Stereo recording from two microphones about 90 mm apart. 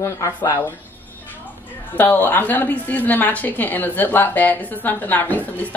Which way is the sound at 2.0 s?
20° left (ahead or behind).